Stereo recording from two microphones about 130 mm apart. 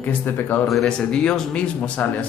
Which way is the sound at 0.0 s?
15° left (ahead or behind).